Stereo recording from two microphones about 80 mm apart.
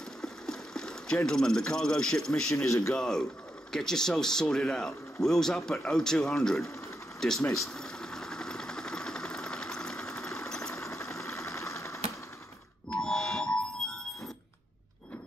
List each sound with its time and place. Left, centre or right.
0.2 s a sound: centre
2.5 s speech: left
2.9 s speech: centre
7.2 s vehicle: centre
10.5 s engine: centre
10.8 s sewing machine: left
12.9 s music: centre